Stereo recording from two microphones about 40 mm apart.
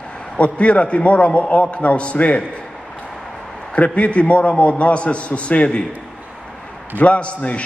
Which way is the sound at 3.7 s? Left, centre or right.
Left.